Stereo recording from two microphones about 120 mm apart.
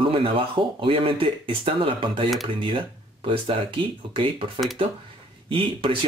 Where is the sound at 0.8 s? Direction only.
50° right (ahead or behind).